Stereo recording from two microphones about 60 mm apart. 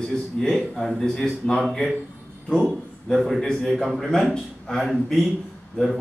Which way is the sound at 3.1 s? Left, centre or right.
Centre.